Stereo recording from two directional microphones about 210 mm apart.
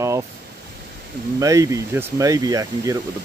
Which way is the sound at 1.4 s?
15° right (ahead or behind).